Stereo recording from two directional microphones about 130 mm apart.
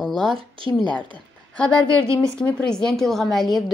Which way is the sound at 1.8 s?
40° left (ahead or behind).